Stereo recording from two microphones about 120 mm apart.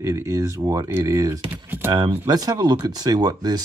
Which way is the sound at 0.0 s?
25° right (ahead or behind).